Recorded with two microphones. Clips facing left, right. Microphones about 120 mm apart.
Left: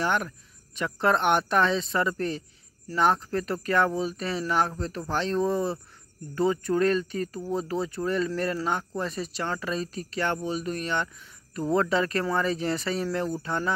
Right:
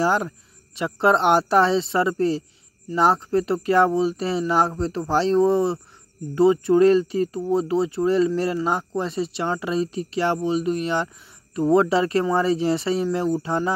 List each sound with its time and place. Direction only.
0.0 s speech: 30° right (ahead or behind)